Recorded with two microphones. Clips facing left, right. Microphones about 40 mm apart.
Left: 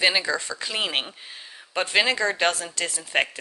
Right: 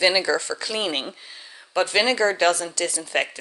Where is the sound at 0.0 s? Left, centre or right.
Left.